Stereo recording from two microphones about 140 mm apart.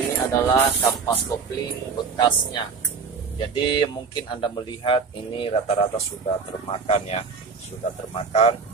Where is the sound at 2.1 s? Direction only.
35° left (ahead or behind).